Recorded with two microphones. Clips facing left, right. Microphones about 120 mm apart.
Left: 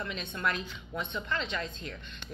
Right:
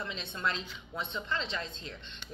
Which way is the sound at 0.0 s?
25° right (ahead or behind).